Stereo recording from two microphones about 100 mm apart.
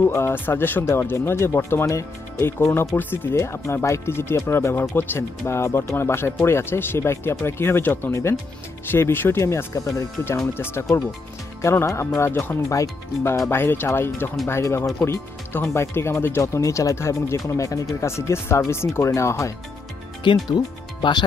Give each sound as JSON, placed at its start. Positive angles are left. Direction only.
{"t": 0.1, "sound": "speech", "side_deg": 25}
{"t": 10.9, "sound": "speech", "side_deg": 0}
{"t": 11.6, "sound": "speech", "side_deg": 30}
{"t": 20.2, "sound": "speech", "side_deg": 45}